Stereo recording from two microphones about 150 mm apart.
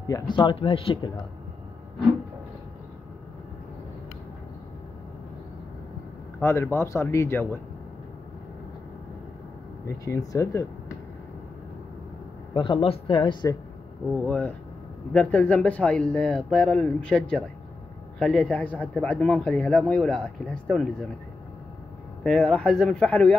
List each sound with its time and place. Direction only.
0.1 s speech: 30° left (ahead or behind)
6.4 s speech: 20° left (ahead or behind)
9.8 s speech: 20° left (ahead or behind)
12.5 s speech: 35° left (ahead or behind)
14.1 s a man's voice: 10° left (ahead or behind)
22.2 s a man's voice: 5° left (ahead or behind)